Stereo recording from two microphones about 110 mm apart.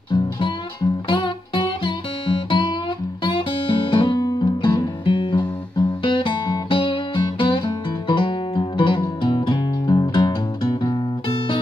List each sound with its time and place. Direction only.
0.1 s music: 45° left (ahead or behind)